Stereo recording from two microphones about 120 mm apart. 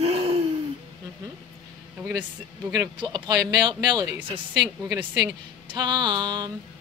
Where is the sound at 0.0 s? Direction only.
55° right (ahead or behind).